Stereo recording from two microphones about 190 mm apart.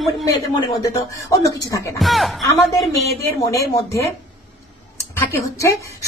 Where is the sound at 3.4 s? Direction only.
15° left (ahead or behind).